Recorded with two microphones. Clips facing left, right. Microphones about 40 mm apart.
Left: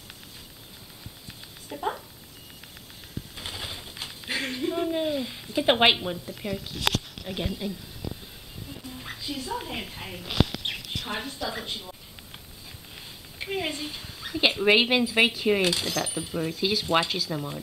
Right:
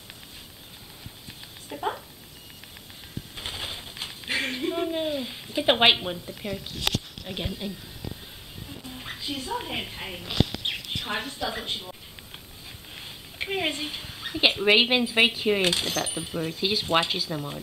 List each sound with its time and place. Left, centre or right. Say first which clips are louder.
1.7 s cat: even; centre
3.3 s pigeon: right 2 dB; centre
6.1 s speech: left 1 dB; centre
7.2 s speech: left 1 dB; centre
8.8 s speech: right 1 dB; centre
12.9 s a sound: right 5 dB; right
14.6 s speech: left 1 dB; centre